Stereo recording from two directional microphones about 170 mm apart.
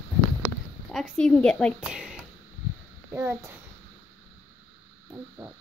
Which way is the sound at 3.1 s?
15° right (ahead or behind).